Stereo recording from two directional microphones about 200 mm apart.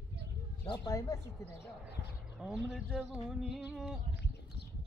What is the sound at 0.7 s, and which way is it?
Speech, 15° left (ahead or behind).